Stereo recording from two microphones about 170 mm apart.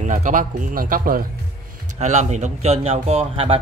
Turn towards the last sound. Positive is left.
turn(degrees=-35)  # may be behind; listen again after turning